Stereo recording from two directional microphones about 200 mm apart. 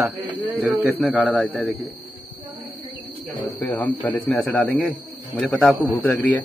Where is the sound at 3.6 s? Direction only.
10° left (ahead or behind).